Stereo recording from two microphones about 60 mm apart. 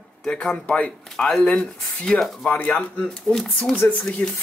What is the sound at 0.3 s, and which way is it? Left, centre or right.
Speech, centre.